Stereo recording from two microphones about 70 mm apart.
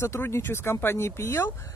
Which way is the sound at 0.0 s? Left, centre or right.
Left.